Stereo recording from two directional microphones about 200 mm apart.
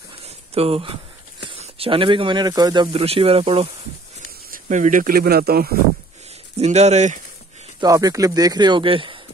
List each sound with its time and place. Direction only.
0.6 s speech: 30° right (ahead or behind); by 5.8 s 50° right (ahead or behind)
6.6 s speech: 35° right (ahead or behind)
7.8 s speech: 15° right (ahead or behind)